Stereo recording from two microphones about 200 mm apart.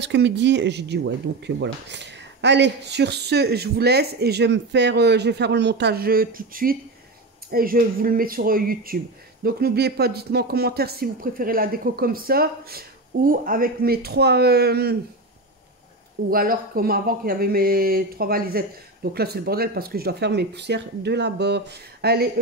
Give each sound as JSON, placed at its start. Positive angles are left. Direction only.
{"t": 0.0, "sound": "speech", "side_deg": -60}
{"t": 16.3, "sound": "speech", "side_deg": -45}